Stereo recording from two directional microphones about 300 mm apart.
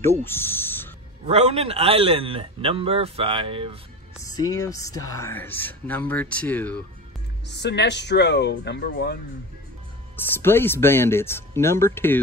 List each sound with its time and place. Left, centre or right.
0.0 s a sound: centre
1.2 s a man's voice: centre
4.2 s speech: centre
7.4 s speech: left
10.1 s speech: centre